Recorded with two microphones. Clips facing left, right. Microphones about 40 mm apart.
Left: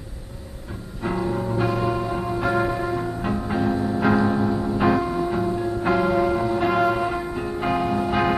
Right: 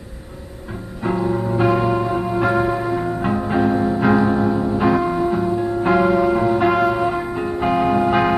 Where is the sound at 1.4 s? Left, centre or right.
Right; by 6.3 s centre.